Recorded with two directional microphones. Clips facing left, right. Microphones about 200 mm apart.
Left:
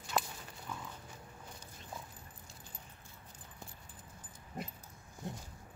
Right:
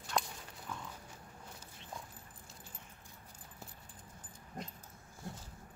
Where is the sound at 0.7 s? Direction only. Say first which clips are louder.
Even; 5° left (ahead or behind).